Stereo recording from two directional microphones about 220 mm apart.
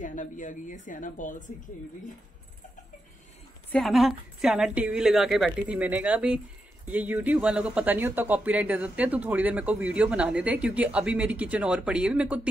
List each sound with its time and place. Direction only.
0.0 s a woman's voice: 35° left (ahead or behind)
3.7 s a woman's voice: centre (ahead or behind)